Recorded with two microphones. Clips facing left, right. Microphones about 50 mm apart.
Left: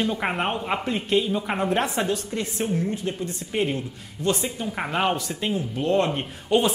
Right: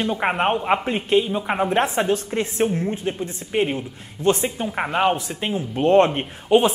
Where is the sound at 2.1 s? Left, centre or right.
Right.